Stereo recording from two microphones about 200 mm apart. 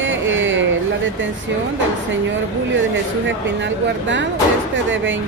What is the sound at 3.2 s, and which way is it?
Speech, 65° right (ahead or behind).